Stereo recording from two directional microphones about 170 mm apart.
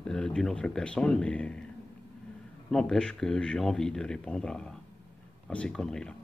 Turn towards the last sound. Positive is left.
turn(degrees=5)  # may be behind; listen again after turning